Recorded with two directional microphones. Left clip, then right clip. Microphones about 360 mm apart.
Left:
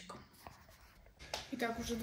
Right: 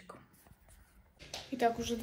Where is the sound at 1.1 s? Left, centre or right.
Centre.